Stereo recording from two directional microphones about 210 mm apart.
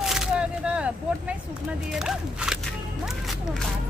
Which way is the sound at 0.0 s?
Centre (ahead or behind).